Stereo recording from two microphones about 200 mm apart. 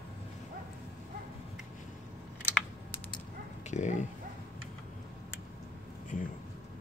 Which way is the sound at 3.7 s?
35° left (ahead or behind).